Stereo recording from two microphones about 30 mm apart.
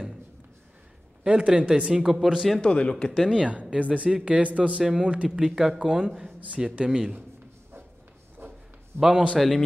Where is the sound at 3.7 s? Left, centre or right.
Right.